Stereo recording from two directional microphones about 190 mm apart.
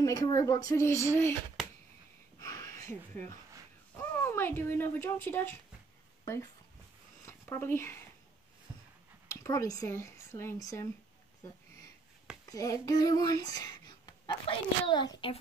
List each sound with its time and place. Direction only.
0.0 s speech: 20° left (ahead or behind)
2.3 s a sound: 15° left (ahead or behind)
3.9 s speech: 10° left (ahead or behind)
9.3 s speech: 15° left (ahead or behind)
12.4 s speech: 20° left (ahead or behind)